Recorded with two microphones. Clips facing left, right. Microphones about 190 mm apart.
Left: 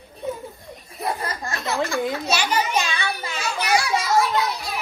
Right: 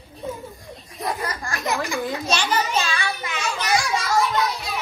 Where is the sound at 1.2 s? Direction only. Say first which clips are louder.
Even; 20° left (ahead or behind).